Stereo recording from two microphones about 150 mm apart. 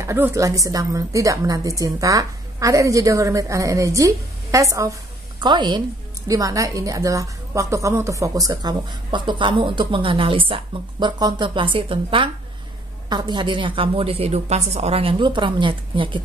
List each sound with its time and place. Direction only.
0.0 s a woman's voice: 15° right (ahead or behind); by 16.2 s 35° right (ahead or behind)